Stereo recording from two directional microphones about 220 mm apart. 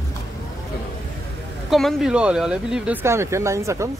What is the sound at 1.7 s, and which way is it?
Speech, centre (ahead or behind).